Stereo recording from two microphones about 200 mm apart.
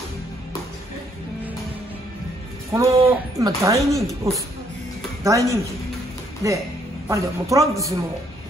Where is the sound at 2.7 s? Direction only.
15° right (ahead or behind).